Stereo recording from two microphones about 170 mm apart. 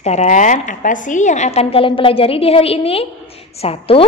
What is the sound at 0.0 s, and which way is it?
A woman's voice, 40° left (ahead or behind).